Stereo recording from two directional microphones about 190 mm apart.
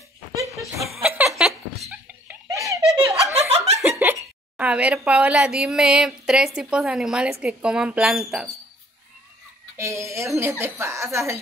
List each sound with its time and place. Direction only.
0.8 s laughter: 5° right (ahead or behind)
2.4 s giggle: 15° right (ahead or behind)
3.0 s snicker: 15° right (ahead or behind)
3.8 s a woman's voice: 10° right (ahead or behind)
9.8 s speech: 15° right (ahead or behind)